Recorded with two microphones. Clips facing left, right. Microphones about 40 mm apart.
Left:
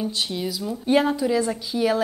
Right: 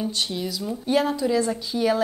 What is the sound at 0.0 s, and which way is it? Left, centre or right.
A woman's voice, centre.